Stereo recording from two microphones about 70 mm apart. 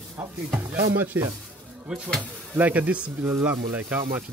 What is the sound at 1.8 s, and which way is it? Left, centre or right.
A man's voice, centre.